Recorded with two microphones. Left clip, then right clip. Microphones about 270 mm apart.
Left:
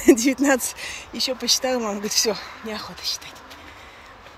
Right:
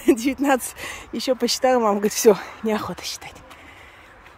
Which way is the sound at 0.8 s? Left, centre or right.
Right.